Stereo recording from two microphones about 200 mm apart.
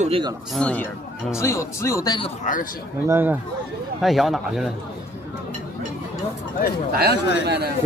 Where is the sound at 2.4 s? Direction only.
40° left (ahead or behind).